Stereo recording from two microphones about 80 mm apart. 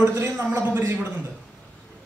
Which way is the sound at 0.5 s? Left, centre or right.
Right.